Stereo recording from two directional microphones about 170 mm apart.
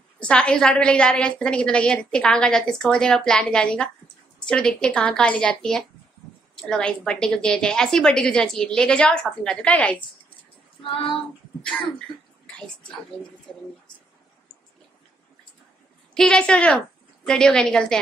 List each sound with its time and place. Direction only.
0.2 s a woman's voice: 5° left (ahead or behind)
10.8 s child singing: 30° left (ahead or behind)
12.5 s a woman's voice: 5° left (ahead or behind)
16.2 s a woman's voice: 5° left (ahead or behind)